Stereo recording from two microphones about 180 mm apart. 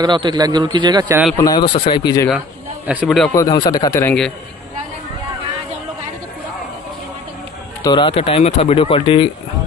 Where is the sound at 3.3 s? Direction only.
20° left (ahead or behind).